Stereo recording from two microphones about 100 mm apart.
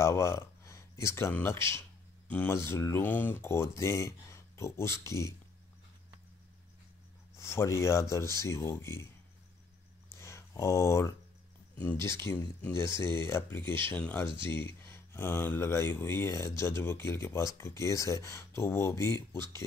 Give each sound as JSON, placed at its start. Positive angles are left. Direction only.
{"t": 0.0, "sound": "speech", "side_deg": 30}
{"t": 7.3, "sound": "speech", "side_deg": 30}
{"t": 10.1, "sound": "a sound", "side_deg": 30}
{"t": 11.7, "sound": "speech", "side_deg": 15}
{"t": 12.0, "sound": "speech", "side_deg": 25}
{"t": 14.4, "sound": "speech", "side_deg": 25}